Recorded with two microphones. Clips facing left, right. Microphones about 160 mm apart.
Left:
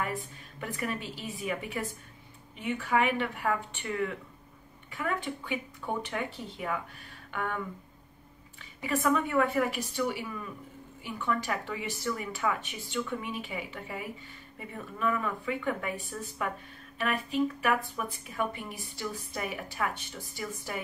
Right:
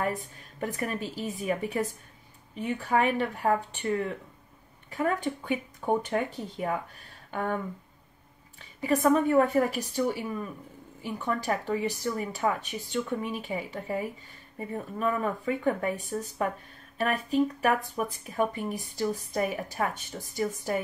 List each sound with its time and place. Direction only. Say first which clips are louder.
0.0 s a woman's voice: right 4 dB; 40° right (ahead or behind)
8.8 s speech: right 5 dB; 40° right (ahead or behind)